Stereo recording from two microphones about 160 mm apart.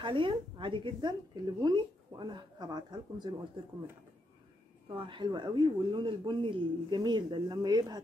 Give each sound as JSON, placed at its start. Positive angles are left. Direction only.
{"t": 0.0, "sound": "a woman's voice", "side_deg": -30}
{"t": 4.8, "sound": "a woman's voice", "side_deg": -30}